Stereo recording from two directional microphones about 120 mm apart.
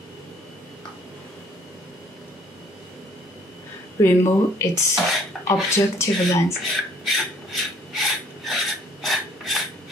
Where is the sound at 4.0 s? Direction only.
25° left (ahead or behind).